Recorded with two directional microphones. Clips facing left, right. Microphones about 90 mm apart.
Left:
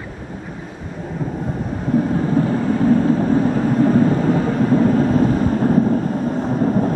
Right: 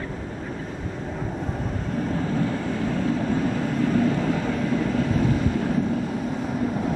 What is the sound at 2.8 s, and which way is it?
Vehicle, 40° left (ahead or behind).